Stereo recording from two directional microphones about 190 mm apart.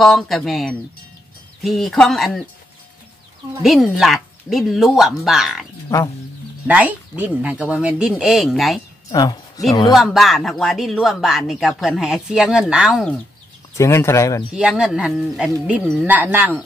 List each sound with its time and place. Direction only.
0.0 s speech: centre (ahead or behind)
3.6 s speech: centre (ahead or behind)
5.9 s speech: 15° left (ahead or behind)
6.7 s speech: 10° right (ahead or behind)
9.1 s speech: 20° left (ahead or behind)
9.9 s speech: centre (ahead or behind)
13.7 s speech: 15° left (ahead or behind)
14.5 s speech: 5° right (ahead or behind)